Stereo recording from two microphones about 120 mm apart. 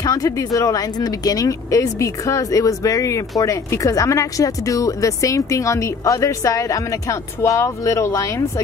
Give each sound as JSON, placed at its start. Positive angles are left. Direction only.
{"t": 0.0, "sound": "speech", "side_deg": 30}